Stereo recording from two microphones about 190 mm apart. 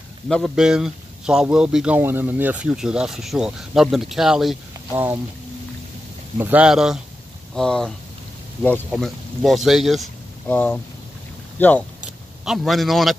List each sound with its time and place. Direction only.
0.3 s speech: centre (ahead or behind)
4.9 s speech: 10° right (ahead or behind)
6.3 s speech: 10° right (ahead or behind)
8.9 s speech: centre (ahead or behind)
12.4 s speech: centre (ahead or behind)